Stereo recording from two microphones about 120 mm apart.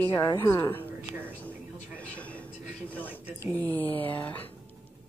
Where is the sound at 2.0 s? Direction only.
10° left (ahead or behind).